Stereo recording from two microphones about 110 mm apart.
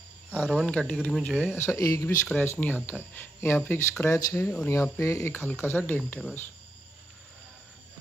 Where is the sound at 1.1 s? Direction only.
Centre (ahead or behind).